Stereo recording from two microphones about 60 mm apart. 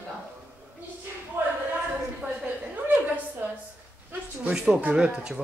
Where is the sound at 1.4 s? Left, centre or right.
Right.